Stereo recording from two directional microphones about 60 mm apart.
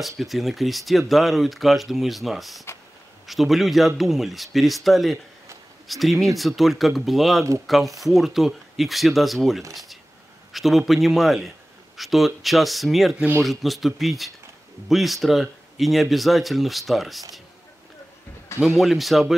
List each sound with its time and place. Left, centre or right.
0.2 s speech: centre
18.8 s speech: centre